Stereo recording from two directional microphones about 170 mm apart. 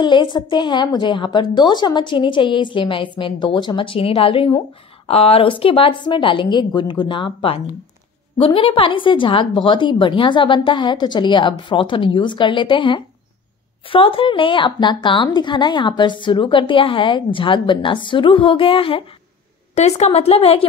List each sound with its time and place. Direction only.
0.0 s a woman's voice: 25° left (ahead or behind)